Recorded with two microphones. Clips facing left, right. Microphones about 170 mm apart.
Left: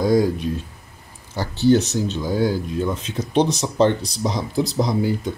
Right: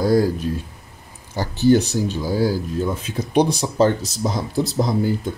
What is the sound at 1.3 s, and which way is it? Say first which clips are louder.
Speech: right 1 dB; 15° right (ahead or behind).